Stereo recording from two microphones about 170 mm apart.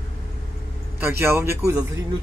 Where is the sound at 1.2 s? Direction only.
15° right (ahead or behind).